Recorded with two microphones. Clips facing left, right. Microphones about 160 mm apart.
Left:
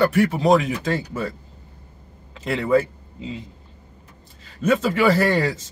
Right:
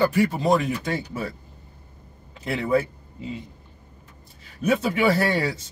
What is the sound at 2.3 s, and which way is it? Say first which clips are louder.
Speech: left 3 dB; 85° left.